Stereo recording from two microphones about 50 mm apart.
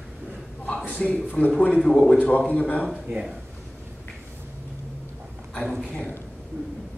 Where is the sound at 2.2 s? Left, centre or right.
Left.